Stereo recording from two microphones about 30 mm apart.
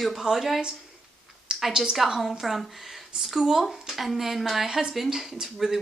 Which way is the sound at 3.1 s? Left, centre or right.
Right.